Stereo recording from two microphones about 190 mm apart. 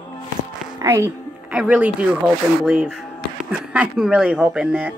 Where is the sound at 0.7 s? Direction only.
15° right (ahead or behind).